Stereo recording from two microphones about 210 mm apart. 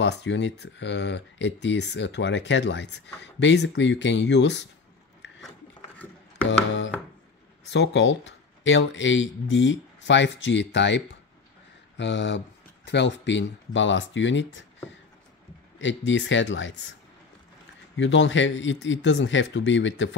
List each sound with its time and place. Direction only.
0.0 s speech: 55° left (ahead or behind)
7.7 s speech: 60° left (ahead or behind)
12.0 s speech: 60° left (ahead or behind)
15.8 s speech: 60° left (ahead or behind)
17.9 s speech: 60° left (ahead or behind)